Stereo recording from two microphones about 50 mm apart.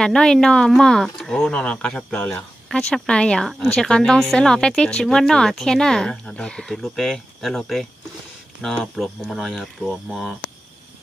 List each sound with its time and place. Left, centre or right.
0.0 s speech: centre
1.6 s speech: left; by 7.9 s centre
8.6 s speech: left
8.9 s speech: centre